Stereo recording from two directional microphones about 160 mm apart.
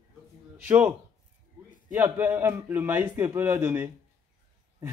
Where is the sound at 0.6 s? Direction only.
10° right (ahead or behind).